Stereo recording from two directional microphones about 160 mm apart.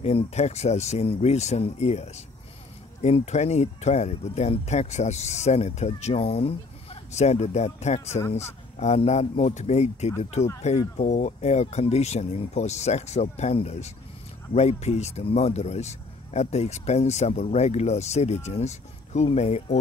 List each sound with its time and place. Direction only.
0.0 s speech: 40° left (ahead or behind)